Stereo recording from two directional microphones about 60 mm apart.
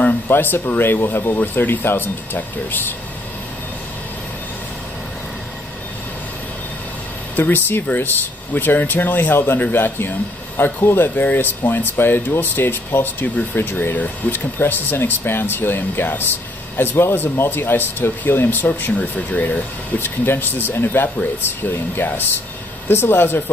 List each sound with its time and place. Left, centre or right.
0.0 s speech: left
7.3 s speech: left